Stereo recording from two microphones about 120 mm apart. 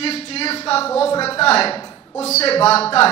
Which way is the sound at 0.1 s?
55° left (ahead or behind).